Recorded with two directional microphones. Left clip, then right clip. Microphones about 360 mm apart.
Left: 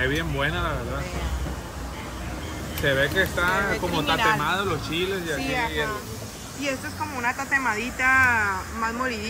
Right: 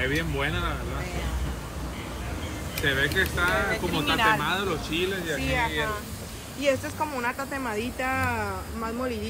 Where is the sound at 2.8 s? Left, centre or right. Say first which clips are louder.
Left 3 dB; left.